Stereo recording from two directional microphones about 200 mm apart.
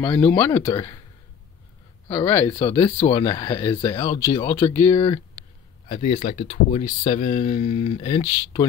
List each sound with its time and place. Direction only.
0.0 s speech: 15° left (ahead or behind)
2.0 s speech: 10° left (ahead or behind)
2.6 s speech: 25° left (ahead or behind)
4.9 s speech: 25° left (ahead or behind)